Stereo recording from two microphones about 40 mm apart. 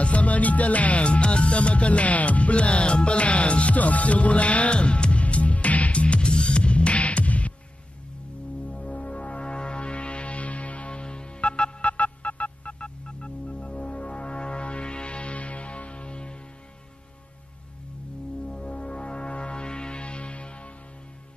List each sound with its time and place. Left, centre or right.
0.0 s music: left
8.6 s music: left
18.5 s music: left